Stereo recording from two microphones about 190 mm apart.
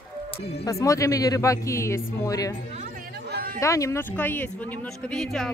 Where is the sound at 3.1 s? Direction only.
55° right (ahead or behind).